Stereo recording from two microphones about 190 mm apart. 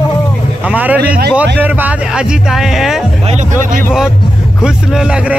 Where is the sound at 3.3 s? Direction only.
40° right (ahead or behind).